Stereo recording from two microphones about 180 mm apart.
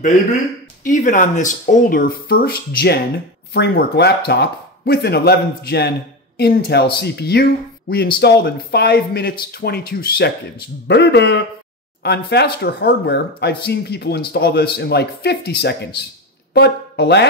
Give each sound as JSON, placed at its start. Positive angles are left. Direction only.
{"t": 0.8, "sound": "speech", "side_deg": 45}